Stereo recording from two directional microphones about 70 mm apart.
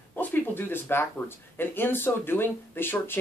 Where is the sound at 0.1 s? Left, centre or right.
Left.